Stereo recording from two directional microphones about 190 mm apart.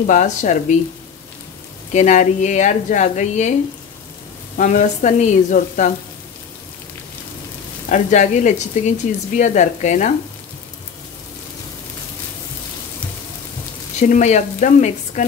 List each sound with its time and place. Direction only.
0.0 s speech: 40° left (ahead or behind)
1.9 s speech: 40° left (ahead or behind)
4.6 s speech: 40° left (ahead or behind)
7.9 s speech: 40° left (ahead or behind)
14.0 s speech: 40° left (ahead or behind)